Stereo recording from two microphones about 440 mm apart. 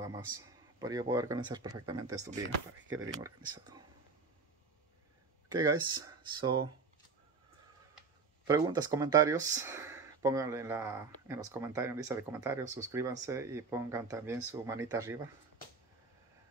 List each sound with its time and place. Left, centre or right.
0.7 s speech: centre
5.5 s speech: centre
8.5 s speech: centre